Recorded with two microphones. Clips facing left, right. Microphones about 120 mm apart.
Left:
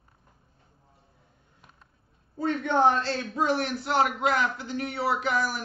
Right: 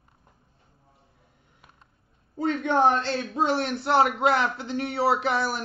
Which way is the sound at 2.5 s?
20° right (ahead or behind).